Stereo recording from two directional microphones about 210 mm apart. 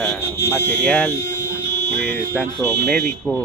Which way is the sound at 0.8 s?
5° left (ahead or behind).